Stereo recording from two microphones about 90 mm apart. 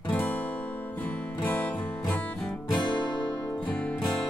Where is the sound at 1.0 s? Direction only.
20° left (ahead or behind).